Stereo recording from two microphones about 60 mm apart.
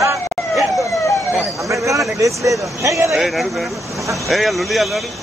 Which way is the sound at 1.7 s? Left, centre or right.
Right.